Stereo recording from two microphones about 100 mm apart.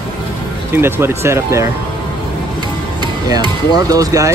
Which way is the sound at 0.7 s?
25° right (ahead or behind).